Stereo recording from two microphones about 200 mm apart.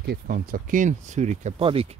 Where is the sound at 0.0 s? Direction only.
50° right (ahead or behind).